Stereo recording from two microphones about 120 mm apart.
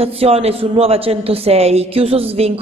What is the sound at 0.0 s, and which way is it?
A woman's voice, 55° right (ahead or behind).